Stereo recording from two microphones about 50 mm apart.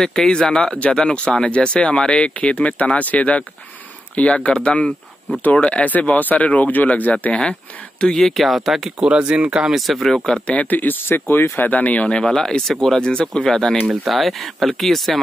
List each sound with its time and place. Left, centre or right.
0.0 s speech: centre; by 4.6 s left
4.6 s speech: centre
8.0 s speech: centre
9.0 s speech: centre
9.7 s speech: centre
10.4 s speech: left
12.1 s speech: centre
13.8 s speech: centre